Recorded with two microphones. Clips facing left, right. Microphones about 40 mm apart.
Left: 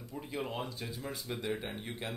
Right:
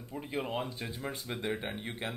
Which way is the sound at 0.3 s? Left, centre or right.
Right.